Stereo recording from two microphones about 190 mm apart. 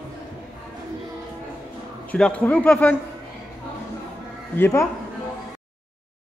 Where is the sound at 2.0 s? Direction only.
5° left (ahead or behind).